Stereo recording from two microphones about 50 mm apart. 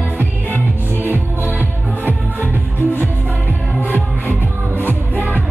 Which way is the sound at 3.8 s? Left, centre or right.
Left.